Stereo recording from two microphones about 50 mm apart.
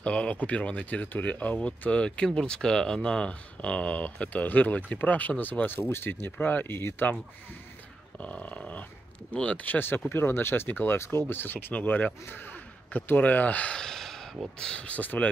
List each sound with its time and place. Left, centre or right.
0.0 s speech: left
1.9 s speech: left
6.4 s speech: left
6.8 s speech: left
8.2 s speech: left
9.7 s speech: left
13.7 s a sound: centre
14.6 s speech: left